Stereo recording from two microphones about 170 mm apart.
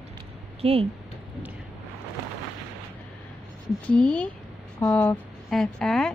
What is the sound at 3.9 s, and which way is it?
A woman's voice, 5° left (ahead or behind).